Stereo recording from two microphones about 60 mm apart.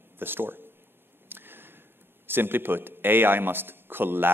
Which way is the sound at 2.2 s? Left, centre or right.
Right.